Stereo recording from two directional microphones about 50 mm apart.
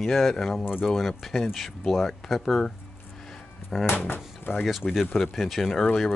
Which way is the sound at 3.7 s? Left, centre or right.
Centre.